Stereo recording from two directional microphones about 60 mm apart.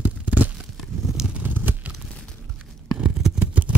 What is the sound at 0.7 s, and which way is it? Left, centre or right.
Tearing, centre.